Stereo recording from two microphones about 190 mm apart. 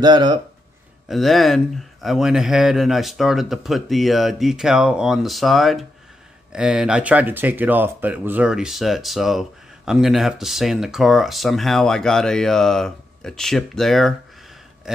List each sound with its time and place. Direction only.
0.0 s speech: 25° right (ahead or behind)
1.0 s speech: centre (ahead or behind)